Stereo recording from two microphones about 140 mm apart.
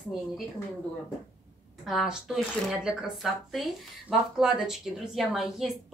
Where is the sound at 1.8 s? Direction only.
5° right (ahead or behind).